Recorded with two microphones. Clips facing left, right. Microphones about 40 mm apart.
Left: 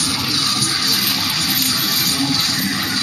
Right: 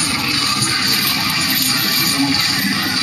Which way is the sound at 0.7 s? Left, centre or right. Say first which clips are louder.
Right 2 dB; right.